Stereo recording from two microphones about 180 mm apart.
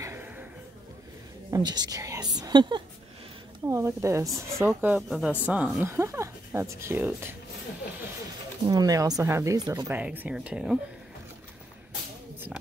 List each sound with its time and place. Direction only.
0.0 s a sound: 10° right (ahead or behind)
1.5 s a woman's voice: 25° right (ahead or behind)
8.6 s speech: 20° right (ahead or behind); by 10.8 s 5° right (ahead or behind)